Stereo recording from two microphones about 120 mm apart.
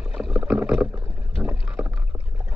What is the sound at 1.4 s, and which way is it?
Rowboat, 10° right (ahead or behind).